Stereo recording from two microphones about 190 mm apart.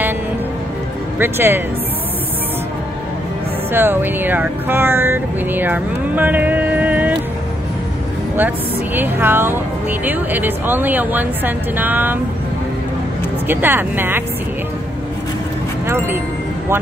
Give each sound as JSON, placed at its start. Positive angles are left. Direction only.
{"t": 1.2, "sound": "speech", "side_deg": -10}
{"t": 3.7, "sound": "speech", "side_deg": -10}
{"t": 8.4, "sound": "speech", "side_deg": -10}
{"t": 13.5, "sound": "speech", "side_deg": -10}